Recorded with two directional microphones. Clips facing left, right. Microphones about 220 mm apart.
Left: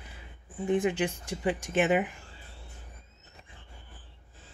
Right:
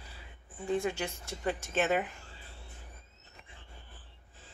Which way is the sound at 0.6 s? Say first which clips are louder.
Left 5 dB; 20° left (ahead or behind).